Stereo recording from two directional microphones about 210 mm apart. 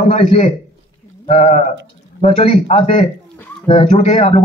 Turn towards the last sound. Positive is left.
turn(degrees=25)  # may be behind; listen again after turning